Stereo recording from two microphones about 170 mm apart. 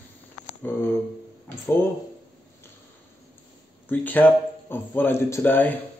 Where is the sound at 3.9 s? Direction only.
10° left (ahead or behind).